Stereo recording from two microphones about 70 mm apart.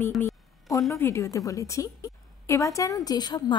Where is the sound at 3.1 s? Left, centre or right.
Left.